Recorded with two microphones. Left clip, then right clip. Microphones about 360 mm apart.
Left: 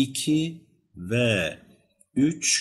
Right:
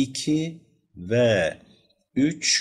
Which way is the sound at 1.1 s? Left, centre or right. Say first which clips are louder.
Right 4 dB; centre.